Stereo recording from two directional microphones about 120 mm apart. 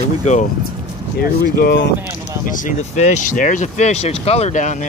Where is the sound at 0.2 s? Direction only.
80° left.